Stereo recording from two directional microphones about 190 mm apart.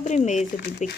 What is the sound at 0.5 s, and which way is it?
Speech, 55° left (ahead or behind).